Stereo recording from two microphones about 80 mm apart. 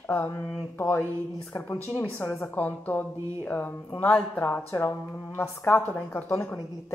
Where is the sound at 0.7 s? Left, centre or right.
Left.